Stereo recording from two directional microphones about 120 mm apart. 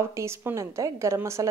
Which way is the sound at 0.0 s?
20° right (ahead or behind).